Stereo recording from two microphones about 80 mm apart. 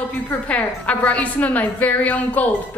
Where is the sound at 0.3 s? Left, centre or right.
Centre.